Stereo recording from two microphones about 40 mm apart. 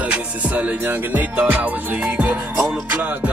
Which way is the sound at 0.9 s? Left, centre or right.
Right.